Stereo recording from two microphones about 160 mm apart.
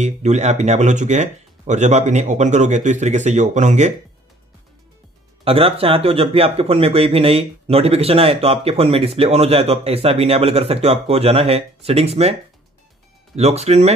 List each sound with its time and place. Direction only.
0.0 s speech: 45° right (ahead or behind)
5.4 s speech: 35° right (ahead or behind)
13.4 s speech: 45° right (ahead or behind)